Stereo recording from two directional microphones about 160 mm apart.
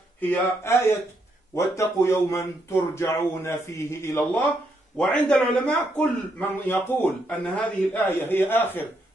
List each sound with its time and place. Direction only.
0.2 s a man's voice: 15° left (ahead or behind)
4.9 s a man's voice: 5° left (ahead or behind)